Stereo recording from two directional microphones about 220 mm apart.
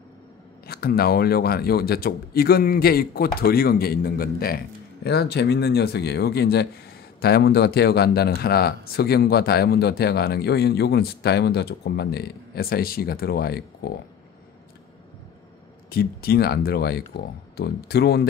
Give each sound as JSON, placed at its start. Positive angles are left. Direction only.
{"t": 0.7, "sound": "speech", "side_deg": 45}
{"t": 15.9, "sound": "speech", "side_deg": 45}